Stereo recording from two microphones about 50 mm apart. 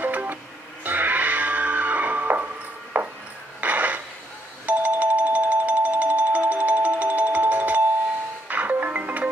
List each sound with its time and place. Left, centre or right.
0.0 s music: right
3.6 s a sound: right
4.6 s music: right